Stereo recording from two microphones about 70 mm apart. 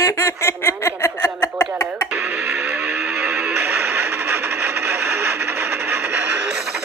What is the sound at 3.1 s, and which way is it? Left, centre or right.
Music, centre.